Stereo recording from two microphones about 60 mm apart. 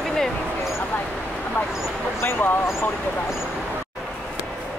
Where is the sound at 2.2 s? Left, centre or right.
Left.